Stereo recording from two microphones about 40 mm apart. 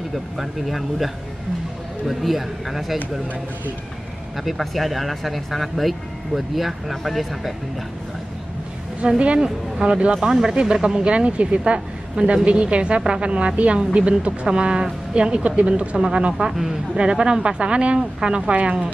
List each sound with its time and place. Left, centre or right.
0.4 s speech: centre
4.5 s speech: centre
9.0 s speech: right
11.1 s a woman's voice: right
16.5 s speech: centre
17.0 s speech: right